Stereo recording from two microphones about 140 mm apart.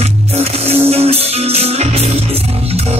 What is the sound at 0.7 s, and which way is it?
Music, 45° right (ahead or behind).